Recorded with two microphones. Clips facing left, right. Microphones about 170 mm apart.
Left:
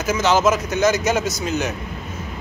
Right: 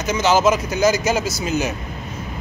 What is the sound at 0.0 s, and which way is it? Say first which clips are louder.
Speech: right 1 dB; centre (ahead or behind).